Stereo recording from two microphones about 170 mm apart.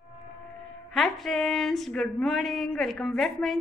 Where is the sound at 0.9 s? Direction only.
Centre (ahead or behind).